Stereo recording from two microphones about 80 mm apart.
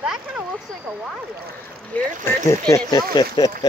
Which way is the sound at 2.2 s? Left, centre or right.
Left.